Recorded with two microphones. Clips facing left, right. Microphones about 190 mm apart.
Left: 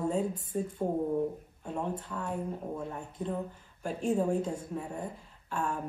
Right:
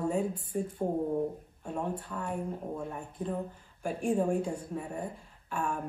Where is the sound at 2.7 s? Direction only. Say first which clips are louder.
Even; 10° right (ahead or behind).